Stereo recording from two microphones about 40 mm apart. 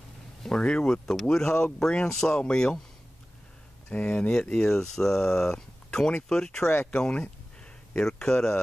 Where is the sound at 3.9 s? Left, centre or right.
Left.